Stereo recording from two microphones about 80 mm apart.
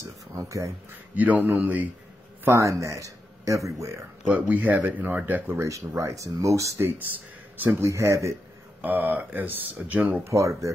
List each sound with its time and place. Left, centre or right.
0.4 s speech: right
1.1 s speech: centre
2.4 s speech: right
4.3 s speech: centre
5.7 s speech: right
8.8 s speech: right
10.2 s speech: right